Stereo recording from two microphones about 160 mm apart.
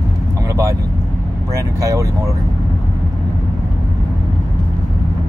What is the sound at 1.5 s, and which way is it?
Speech, 20° right (ahead or behind).